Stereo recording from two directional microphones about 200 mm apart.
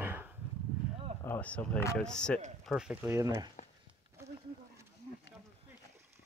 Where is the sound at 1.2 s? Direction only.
10° left (ahead or behind); by 3.4 s 15° right (ahead or behind).